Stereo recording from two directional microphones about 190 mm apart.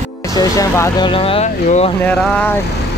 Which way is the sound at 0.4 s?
15° left (ahead or behind).